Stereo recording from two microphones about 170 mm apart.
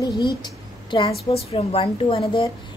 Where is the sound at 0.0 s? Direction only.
25° left (ahead or behind).